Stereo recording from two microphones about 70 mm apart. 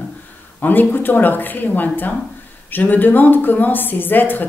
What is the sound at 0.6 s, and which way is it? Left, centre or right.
Speech, left.